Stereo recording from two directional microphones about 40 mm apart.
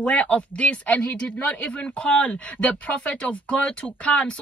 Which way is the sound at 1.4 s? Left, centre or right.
Left.